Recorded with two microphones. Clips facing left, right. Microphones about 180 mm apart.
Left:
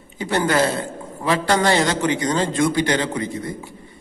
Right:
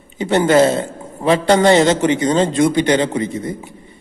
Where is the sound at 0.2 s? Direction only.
20° right (ahead or behind).